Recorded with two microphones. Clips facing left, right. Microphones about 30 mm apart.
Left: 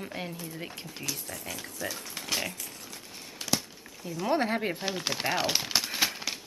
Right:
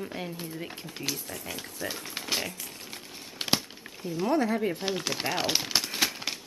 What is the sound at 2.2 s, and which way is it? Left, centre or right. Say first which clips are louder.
Speech: even; centre.